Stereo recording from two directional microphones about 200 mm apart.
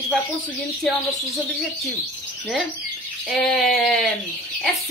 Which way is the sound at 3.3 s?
Centre (ahead or behind).